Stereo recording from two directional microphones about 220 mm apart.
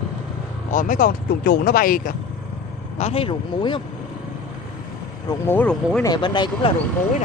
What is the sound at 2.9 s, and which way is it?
Speech, 30° left (ahead or behind).